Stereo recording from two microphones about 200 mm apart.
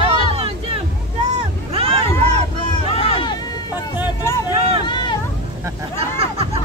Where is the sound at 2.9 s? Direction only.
25° left (ahead or behind).